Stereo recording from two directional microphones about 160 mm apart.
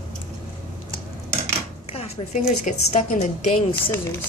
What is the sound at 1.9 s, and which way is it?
A woman's voice, 45° left (ahead or behind).